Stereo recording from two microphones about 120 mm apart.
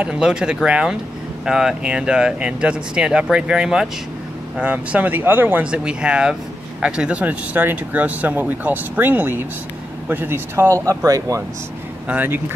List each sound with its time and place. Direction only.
0.0 s speech: 5° right (ahead or behind); by 11.4 s 30° right (ahead or behind)
12.1 s speech: 15° right (ahead or behind)